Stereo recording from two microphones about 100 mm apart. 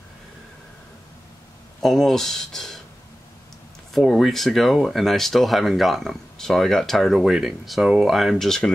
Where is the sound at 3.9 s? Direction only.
Centre (ahead or behind).